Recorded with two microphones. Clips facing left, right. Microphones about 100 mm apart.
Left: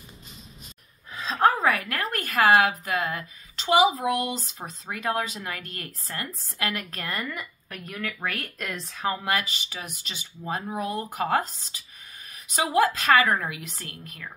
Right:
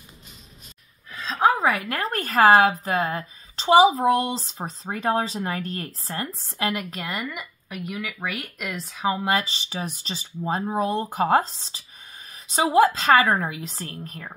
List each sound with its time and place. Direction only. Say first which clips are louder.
1.2 s a sound: right 1 dB; centre (ahead or behind)
1.5 s a woman's voice: right 2 dB; 20° right (ahead or behind)
1.9 s a woman's voice: right 3 dB; 30° right (ahead or behind); by 9.2 s 5° right (ahead or behind)
9.2 s a woman's voice: right 4 dB; 30° right (ahead or behind)